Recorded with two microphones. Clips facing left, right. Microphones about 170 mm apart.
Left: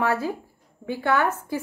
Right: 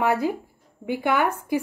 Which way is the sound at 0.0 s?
15° right (ahead or behind).